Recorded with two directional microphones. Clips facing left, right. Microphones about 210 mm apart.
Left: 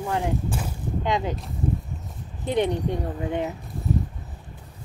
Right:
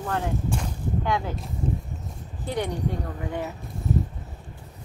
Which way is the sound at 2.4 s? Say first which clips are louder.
Left 5 dB; 20° left (ahead or behind).